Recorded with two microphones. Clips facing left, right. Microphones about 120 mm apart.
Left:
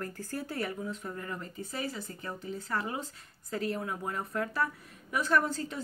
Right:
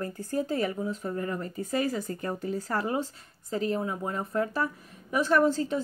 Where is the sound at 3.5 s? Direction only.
30° right (ahead or behind).